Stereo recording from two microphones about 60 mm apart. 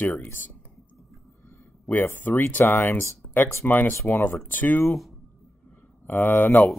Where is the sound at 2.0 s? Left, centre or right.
Left.